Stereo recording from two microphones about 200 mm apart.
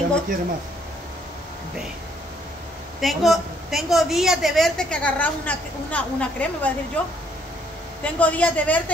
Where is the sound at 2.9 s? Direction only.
Centre (ahead or behind).